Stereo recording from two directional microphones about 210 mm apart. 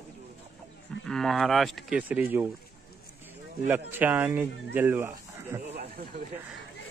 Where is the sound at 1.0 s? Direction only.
5° left (ahead or behind).